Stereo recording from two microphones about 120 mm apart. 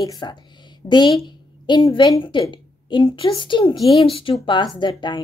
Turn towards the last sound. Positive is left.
turn(degrees=40)  # may be behind; listen again after turning